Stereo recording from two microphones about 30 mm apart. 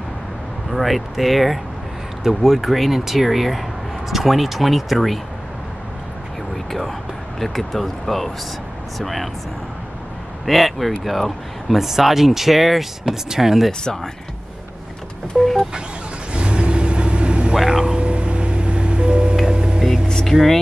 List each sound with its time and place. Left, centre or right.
0.7 s speech: centre
6.5 s whispering: centre
7.3 s speech: centre
10.4 s speech: centre
11.8 s speech: centre
13.0 s speech: centre
13.7 s speech: centre
15.3 s speech: centre
16.3 s vehicle: right
17.6 s speech: centre
17.8 s music: right
20.2 s speech: centre